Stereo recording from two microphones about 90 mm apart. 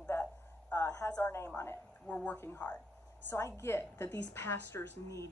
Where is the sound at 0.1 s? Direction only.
25° left (ahead or behind).